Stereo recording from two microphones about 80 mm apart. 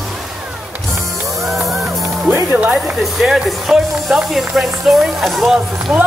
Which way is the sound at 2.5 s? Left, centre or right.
Centre.